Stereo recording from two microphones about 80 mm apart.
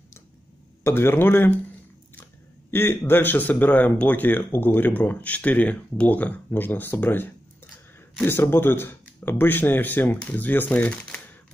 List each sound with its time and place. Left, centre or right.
0.8 s speech: left
2.7 s speech: left